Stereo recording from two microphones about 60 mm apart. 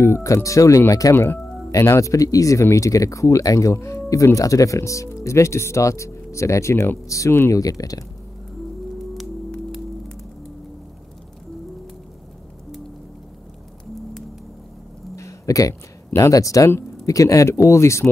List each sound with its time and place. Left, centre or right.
0.0 s speech: left
1.1 s speech: left
1.7 s speech: left
2.6 s speech: left
7.5 s speech: left
8.9 s hum: centre
15.1 s a sound: left
16.2 s speech: left